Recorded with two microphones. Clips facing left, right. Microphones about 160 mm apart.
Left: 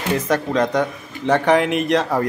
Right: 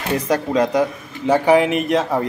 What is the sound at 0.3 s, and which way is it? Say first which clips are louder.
Speech: right 2 dB; 10° right (ahead or behind).